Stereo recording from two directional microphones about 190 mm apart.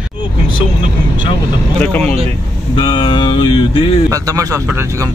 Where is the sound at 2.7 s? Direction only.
25° left (ahead or behind).